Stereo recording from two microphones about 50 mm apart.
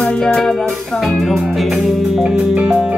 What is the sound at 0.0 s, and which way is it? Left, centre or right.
Music, centre.